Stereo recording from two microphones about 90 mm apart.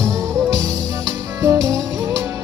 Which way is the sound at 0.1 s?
35° right (ahead or behind).